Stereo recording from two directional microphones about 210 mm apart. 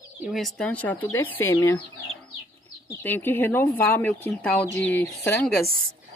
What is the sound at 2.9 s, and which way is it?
Speech, 10° left (ahead or behind).